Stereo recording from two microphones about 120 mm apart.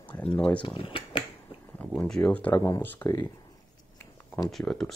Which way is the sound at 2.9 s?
30° left (ahead or behind).